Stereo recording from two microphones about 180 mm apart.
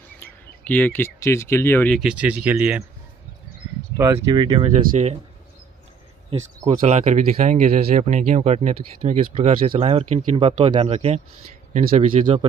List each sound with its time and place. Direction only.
0.2 s speech: 10° left (ahead or behind)
2.0 s speech: 5° right (ahead or behind)
3.9 s speech: 20° right (ahead or behind)
4.8 s speech: 40° right (ahead or behind)
6.3 s speech: 35° right (ahead or behind)
12.2 s speech: 35° right (ahead or behind)